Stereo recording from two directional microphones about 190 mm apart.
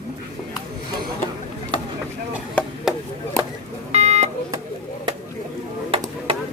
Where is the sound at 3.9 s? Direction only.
35° right (ahead or behind).